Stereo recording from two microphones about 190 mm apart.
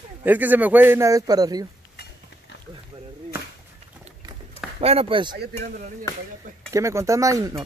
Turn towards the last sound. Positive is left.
turn(degrees=-15)  # may be behind; listen again after turning